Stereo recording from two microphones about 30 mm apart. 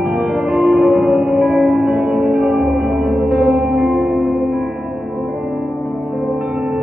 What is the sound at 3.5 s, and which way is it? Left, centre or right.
Music, right.